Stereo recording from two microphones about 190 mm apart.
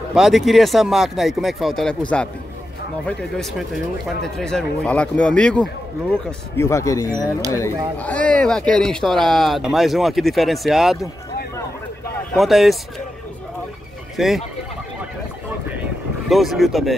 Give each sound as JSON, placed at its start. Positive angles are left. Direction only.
{"t": 0.1, "sound": "speech", "side_deg": 0}
{"t": 8.0, "sound": "speech", "side_deg": 5}
{"t": 12.4, "sound": "speech", "side_deg": 0}
{"t": 14.1, "sound": "speech", "side_deg": 0}
{"t": 16.3, "sound": "speech", "side_deg": 0}